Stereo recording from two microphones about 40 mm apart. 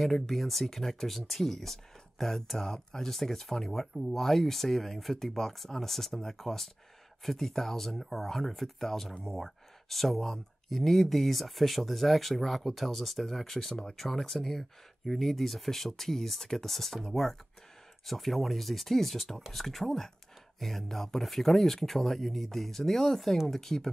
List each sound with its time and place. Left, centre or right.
0.0 s speech: centre